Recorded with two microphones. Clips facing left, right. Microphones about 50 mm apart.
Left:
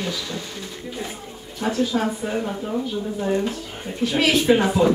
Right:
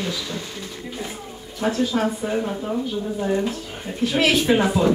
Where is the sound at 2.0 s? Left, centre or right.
Centre.